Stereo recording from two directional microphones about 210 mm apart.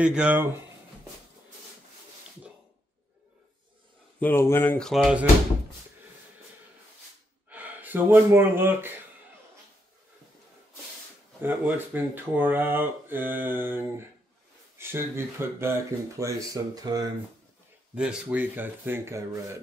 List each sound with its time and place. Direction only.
0.0 s speech: 5° right (ahead or behind)
4.2 s speech: 10° left (ahead or behind)
7.4 s speech: 10° right (ahead or behind)
11.4 s speech: 10° right (ahead or behind)
17.9 s speech: 5° right (ahead or behind)